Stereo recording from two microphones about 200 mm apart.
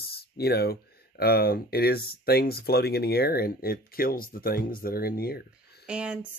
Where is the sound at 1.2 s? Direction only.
50° left (ahead or behind).